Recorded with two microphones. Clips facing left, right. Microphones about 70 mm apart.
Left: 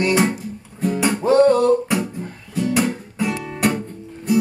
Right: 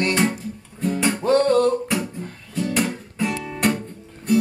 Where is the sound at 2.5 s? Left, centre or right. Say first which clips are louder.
Left 3 dB; centre.